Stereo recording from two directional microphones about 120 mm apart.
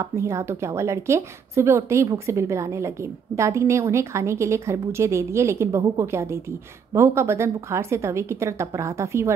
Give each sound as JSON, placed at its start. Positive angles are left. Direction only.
{"t": 0.0, "sound": "a woman's voice", "side_deg": -25}